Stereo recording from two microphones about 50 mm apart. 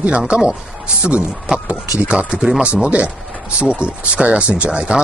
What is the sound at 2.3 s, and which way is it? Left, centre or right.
Speech, centre.